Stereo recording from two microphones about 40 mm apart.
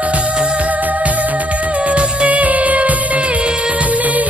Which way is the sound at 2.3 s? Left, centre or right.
Right.